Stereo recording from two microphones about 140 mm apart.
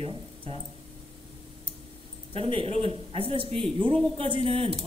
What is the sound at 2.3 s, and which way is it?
Speech, 45° right (ahead or behind).